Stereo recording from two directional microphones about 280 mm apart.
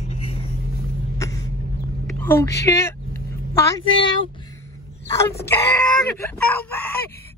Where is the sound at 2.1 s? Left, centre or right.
Centre.